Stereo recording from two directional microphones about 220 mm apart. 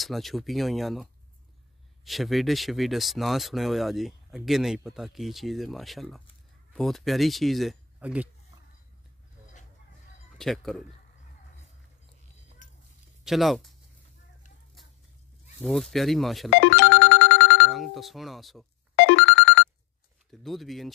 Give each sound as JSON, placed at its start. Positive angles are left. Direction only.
{"t": 0.0, "sound": "speech", "side_deg": 0}
{"t": 2.0, "sound": "speech", "side_deg": 0}
{"t": 10.3, "sound": "speech", "side_deg": 0}
{"t": 13.2, "sound": "speech", "side_deg": 0}
{"t": 15.6, "sound": "speech", "side_deg": 0}
{"t": 16.5, "sound": "music", "side_deg": 55}
{"t": 17.6, "sound": "speech", "side_deg": 0}
{"t": 18.9, "sound": "ringtone", "side_deg": 55}
{"t": 20.2, "sound": "speech", "side_deg": 0}